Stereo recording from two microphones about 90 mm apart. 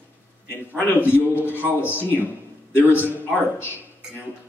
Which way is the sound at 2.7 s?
25° left (ahead or behind).